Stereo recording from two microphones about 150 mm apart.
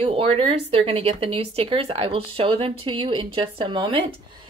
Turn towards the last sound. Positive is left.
turn(degrees=-35)  # may be behind; listen again after turning